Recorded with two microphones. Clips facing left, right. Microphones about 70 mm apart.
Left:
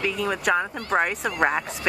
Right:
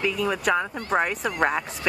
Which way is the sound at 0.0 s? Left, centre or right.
Centre.